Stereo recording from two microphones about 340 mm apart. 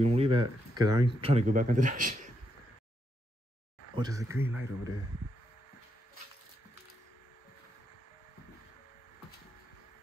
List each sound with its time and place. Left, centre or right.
0.0 s speech: centre
3.9 s speech: centre